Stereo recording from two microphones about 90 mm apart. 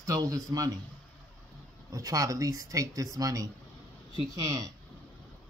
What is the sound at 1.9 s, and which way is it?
A man's voice, 40° right (ahead or behind).